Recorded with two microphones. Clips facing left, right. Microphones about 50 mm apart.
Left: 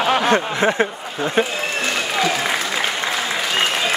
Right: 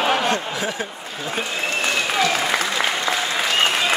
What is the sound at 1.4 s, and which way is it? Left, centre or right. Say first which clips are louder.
Speech: left 9 dB; left.